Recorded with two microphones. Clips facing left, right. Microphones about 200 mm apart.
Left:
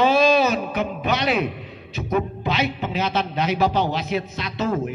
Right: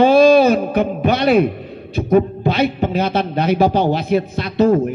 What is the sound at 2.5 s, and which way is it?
A man's voice, 55° right (ahead or behind).